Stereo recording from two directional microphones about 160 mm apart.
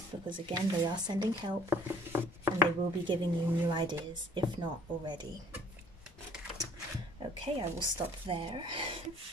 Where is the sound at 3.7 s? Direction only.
30° right (ahead or behind).